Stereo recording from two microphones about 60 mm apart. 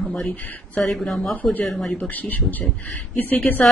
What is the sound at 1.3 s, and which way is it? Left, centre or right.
Speech, left.